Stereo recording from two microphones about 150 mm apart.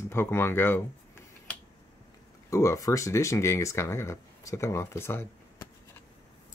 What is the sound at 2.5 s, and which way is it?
Speech, 20° left (ahead or behind).